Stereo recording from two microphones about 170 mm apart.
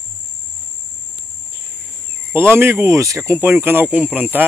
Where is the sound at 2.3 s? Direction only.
15° right (ahead or behind).